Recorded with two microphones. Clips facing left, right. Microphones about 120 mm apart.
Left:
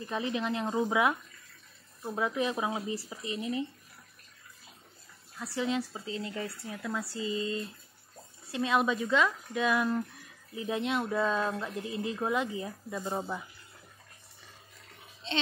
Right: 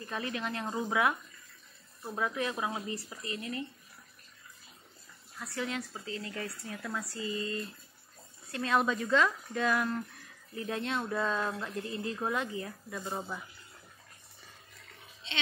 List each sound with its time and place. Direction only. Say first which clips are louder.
0.0 s speech: left 4 dB; 20° left (ahead or behind)
5.5 s speech: left 5 dB; 25° left (ahead or behind)
6.8 s speech: left 3 dB; 5° left (ahead or behind)
7.1 s speech: left 3 dB; 25° left (ahead or behind)